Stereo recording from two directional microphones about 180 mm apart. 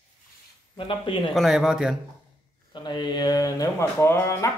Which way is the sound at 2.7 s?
25° left (ahead or behind).